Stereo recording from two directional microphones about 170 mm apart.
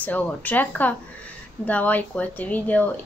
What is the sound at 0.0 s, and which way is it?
Speech, 10° left (ahead or behind).